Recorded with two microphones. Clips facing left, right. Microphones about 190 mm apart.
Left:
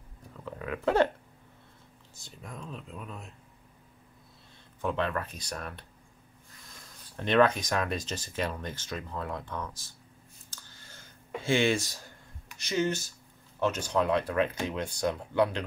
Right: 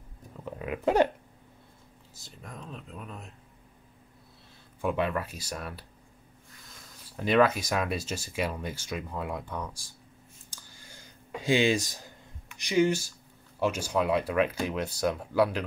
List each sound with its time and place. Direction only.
0.5 s speech: 20° right (ahead or behind)
2.2 s speech: centre (ahead or behind)
4.8 s speech: 10° right (ahead or behind)
7.2 s speech: 5° right (ahead or behind)
10.5 s a sound: 15° right (ahead or behind)
11.4 s speech: 15° right (ahead or behind)